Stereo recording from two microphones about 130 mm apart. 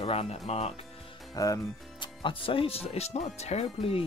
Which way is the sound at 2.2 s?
45° left (ahead or behind).